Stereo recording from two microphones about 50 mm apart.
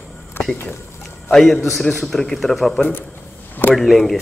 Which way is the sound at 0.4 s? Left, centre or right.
Left.